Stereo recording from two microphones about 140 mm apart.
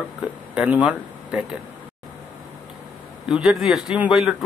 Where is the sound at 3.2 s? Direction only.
5° right (ahead or behind).